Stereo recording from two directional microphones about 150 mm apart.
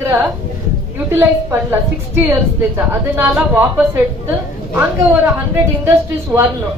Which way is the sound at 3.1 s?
15° right (ahead or behind).